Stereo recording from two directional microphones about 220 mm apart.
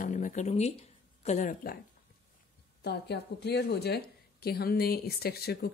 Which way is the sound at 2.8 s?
50° left (ahead or behind).